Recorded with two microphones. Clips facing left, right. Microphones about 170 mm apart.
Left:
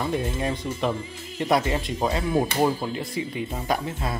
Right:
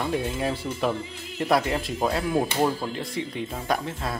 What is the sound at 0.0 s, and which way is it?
Speech, centre (ahead or behind).